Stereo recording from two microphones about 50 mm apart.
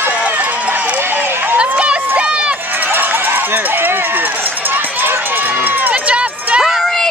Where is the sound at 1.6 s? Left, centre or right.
Right.